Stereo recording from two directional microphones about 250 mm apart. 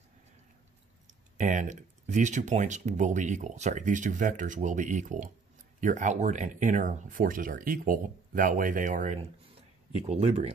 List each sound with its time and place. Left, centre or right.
1.4 s speech: right